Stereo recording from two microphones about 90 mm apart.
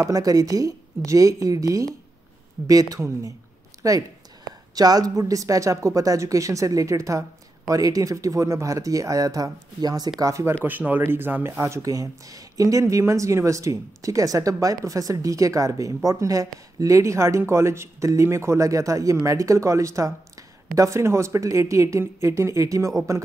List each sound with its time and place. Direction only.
0.0 s speech: 40° right (ahead or behind)
10.2 s speech: 35° right (ahead or behind)
10.6 s speech: 20° right (ahead or behind)